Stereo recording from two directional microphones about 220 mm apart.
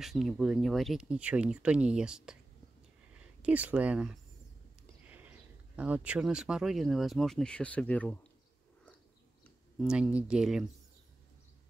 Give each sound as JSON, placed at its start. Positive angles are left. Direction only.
{"t": 0.0, "sound": "speech", "side_deg": 0}
{"t": 3.4, "sound": "speech", "side_deg": -5}
{"t": 5.0, "sound": "a sound", "side_deg": -5}
{"t": 5.8, "sound": "speech", "side_deg": -5}
{"t": 9.8, "sound": "speech", "side_deg": -5}